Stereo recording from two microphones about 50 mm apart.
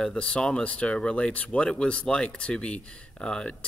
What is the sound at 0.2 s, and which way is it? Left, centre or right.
Speech, centre.